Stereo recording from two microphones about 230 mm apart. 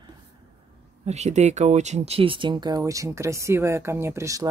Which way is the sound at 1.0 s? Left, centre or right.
Right.